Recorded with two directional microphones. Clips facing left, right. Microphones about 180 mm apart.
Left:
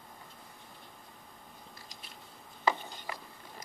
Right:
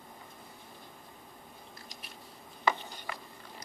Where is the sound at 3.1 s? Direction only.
20° left (ahead or behind).